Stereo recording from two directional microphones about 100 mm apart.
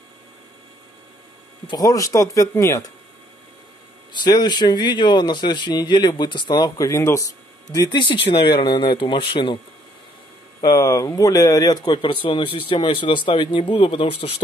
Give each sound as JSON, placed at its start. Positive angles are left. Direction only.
{"t": 1.7, "sound": "speech", "side_deg": 35}
{"t": 4.1, "sound": "speech", "side_deg": 45}
{"t": 7.7, "sound": "speech", "side_deg": 45}
{"t": 10.6, "sound": "a man's voice", "side_deg": 35}